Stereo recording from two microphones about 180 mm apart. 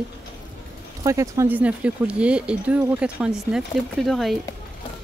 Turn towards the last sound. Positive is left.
turn(degrees=0)  # may be behind; listen again after turning